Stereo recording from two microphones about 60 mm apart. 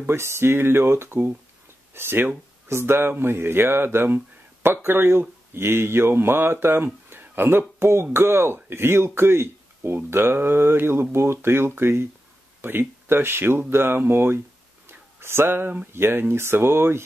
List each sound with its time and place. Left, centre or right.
0.0 s speech: right
14.9 s a sound: right
15.9 s speech: right